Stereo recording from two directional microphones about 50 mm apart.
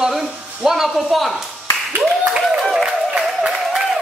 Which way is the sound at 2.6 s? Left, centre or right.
Centre.